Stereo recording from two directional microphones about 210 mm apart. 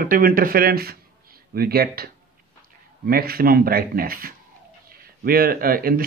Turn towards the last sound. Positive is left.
turn(degrees=-45)  # may be behind; listen again after turning